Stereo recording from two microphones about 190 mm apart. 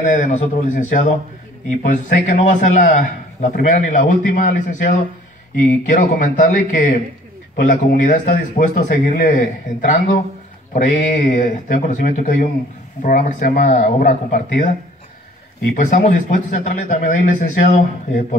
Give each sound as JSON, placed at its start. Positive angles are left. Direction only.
{"t": 0.0, "sound": "a man's voice", "side_deg": 40}
{"t": 15.7, "sound": "speech", "side_deg": 40}